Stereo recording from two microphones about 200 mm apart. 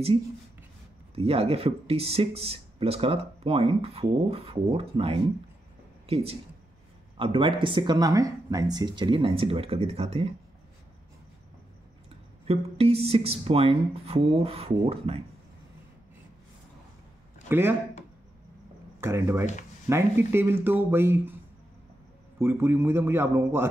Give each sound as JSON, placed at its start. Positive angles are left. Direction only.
{"t": 1.1, "sound": "speech", "side_deg": -30}
{"t": 12.4, "sound": "speech", "side_deg": -30}
{"t": 17.5, "sound": "speech", "side_deg": -10}
{"t": 18.9, "sound": "speech", "side_deg": -10}
{"t": 22.4, "sound": "speech", "side_deg": -10}